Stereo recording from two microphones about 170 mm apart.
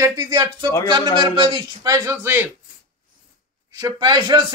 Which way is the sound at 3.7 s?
20° right (ahead or behind).